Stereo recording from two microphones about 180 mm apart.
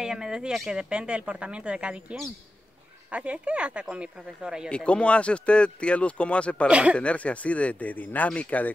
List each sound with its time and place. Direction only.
0.0 s speech: 5° right (ahead or behind)
4.6 s speech: 5° left (ahead or behind)
6.7 s speech: 5° right (ahead or behind)
7.0 s speech: 5° left (ahead or behind)